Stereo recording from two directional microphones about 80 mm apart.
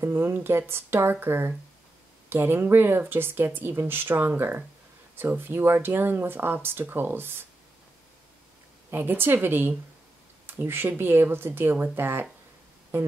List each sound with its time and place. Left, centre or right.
0.0 s speech: right
8.9 s speech: right